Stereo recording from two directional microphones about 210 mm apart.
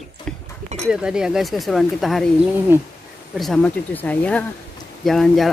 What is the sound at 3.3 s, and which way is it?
Speech, centre (ahead or behind).